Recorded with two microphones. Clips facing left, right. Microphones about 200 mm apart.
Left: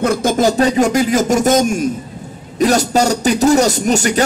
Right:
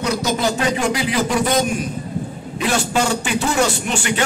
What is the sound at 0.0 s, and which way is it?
A man's voice, 50° left (ahead or behind).